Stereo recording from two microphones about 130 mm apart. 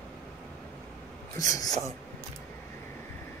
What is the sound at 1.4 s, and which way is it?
Speech, 25° left (ahead or behind).